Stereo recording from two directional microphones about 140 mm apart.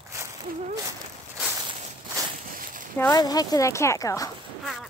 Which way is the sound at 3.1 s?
25° left (ahead or behind).